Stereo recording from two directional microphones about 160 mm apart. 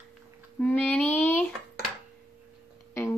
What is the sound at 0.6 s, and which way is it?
Child singing, 5° left (ahead or behind).